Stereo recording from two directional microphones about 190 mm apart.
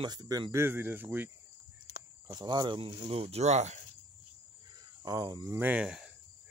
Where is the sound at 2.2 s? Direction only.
25° right (ahead or behind).